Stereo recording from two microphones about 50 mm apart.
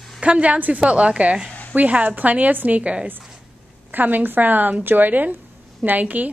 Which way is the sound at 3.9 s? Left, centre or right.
Right.